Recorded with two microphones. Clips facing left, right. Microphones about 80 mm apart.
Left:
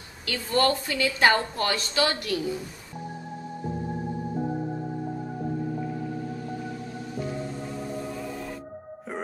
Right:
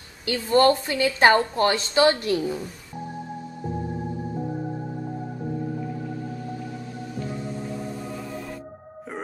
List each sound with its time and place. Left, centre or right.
0.2 s a woman's voice: right